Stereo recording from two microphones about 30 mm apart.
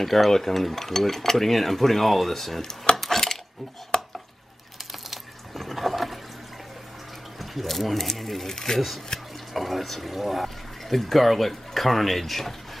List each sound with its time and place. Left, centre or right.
0.0 s stir: centre
3.0 s a sound: centre
3.9 s stir: centre
5.1 s water: centre
7.3 s speech: centre
8.5 s stir: centre
8.7 s speech: centre